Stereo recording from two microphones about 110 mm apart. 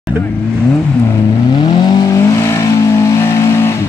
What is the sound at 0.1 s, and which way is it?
Speech, 20° right (ahead or behind).